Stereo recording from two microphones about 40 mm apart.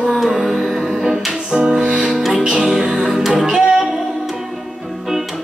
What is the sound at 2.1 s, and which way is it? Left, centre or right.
Music, centre.